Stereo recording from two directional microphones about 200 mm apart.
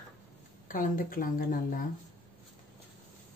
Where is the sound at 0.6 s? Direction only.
45° left (ahead or behind).